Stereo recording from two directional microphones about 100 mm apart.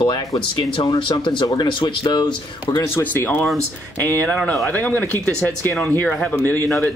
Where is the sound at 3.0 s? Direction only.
20° left (ahead or behind).